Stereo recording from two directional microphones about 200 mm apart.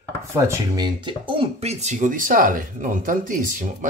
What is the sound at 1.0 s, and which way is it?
Speech, 25° right (ahead or behind).